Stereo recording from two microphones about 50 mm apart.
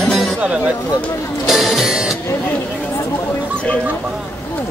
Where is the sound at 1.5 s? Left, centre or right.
Centre.